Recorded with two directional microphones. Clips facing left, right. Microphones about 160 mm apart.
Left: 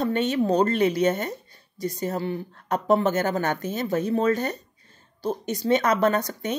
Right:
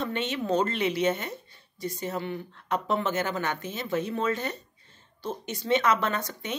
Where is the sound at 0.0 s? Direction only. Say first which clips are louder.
Left 7 dB; 40° left (ahead or behind).